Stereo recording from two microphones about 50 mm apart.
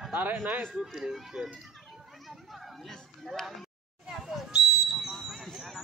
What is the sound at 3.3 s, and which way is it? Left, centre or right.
Speech, centre.